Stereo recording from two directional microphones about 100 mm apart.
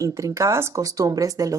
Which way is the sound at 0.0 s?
30° right (ahead or behind).